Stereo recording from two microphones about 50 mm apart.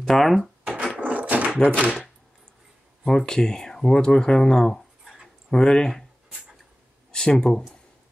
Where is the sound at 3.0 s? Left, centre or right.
Centre.